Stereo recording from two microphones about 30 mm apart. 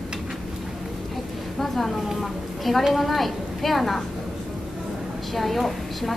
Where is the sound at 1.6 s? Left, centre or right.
Centre.